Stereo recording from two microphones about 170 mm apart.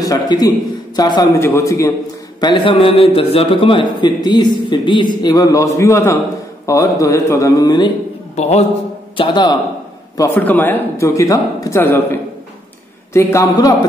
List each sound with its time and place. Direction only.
0.0 s a man's voice: 20° left (ahead or behind)
8.4 s a man's voice: 40° left (ahead or behind)
9.1 s a man's voice: 30° left (ahead or behind)
10.1 s a man's voice: 15° left (ahead or behind)